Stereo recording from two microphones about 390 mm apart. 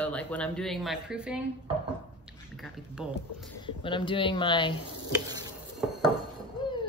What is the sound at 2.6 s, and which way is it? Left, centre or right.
Speech, centre.